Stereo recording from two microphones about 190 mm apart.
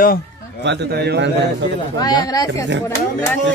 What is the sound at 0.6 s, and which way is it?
Speech, 60° right (ahead or behind).